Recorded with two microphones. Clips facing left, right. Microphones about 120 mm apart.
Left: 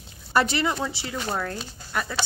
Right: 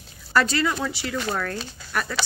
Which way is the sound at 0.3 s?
20° left (ahead or behind).